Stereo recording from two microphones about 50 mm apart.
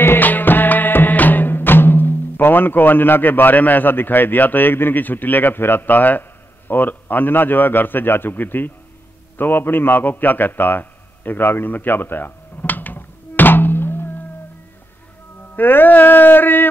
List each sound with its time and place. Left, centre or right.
0.0 s music: left
6.7 s a man's voice: left
9.4 s a sound: left
15.5 s a man's voice: left